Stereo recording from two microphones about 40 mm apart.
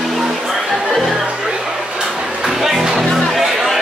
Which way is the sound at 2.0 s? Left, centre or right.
Right.